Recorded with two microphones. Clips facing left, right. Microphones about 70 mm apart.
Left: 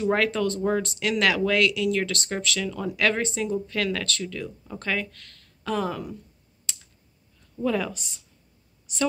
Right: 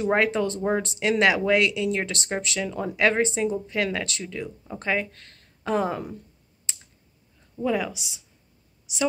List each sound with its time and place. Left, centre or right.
0.0 s speech: right
6.7 s clicking: right
7.6 s speech: centre